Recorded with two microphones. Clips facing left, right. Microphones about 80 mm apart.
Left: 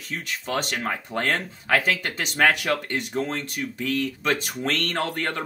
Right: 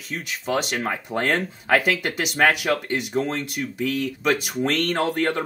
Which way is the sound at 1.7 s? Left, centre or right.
Centre.